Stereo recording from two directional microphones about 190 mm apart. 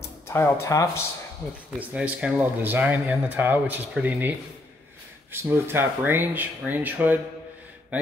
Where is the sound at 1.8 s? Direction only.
5° right (ahead or behind).